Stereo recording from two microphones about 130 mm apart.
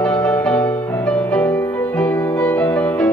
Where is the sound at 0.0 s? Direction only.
10° left (ahead or behind).